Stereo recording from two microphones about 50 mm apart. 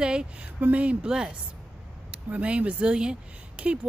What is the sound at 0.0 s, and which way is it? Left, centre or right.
Speech, centre.